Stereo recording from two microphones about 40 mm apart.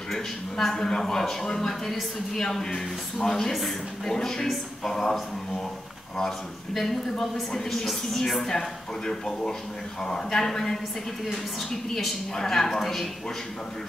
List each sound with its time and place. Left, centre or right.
0.1 s a man's voice: centre
3.5 s a woman's voice: centre
4.1 s a man's voice: centre
11.9 s a man's voice: centre